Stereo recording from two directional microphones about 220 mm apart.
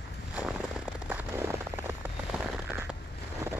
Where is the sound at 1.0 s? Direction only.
10° right (ahead or behind).